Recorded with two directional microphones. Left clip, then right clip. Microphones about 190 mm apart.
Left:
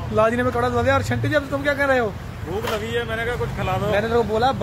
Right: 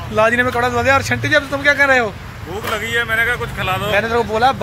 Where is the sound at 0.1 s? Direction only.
5° right (ahead or behind).